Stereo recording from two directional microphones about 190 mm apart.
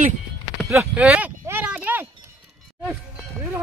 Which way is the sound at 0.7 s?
10° right (ahead or behind).